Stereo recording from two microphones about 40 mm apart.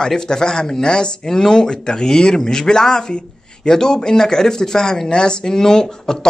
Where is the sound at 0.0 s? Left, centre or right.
Centre.